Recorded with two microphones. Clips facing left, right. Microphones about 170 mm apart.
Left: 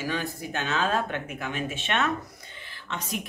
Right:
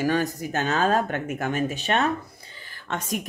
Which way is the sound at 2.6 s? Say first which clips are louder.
Right 4 dB; 45° right (ahead or behind).